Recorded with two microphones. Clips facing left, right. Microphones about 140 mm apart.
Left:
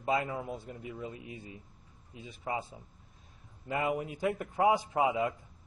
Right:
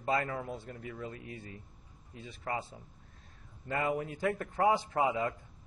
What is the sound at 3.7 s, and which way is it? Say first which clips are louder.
A man's voice: left 1 dB; 20° left (ahead or behind).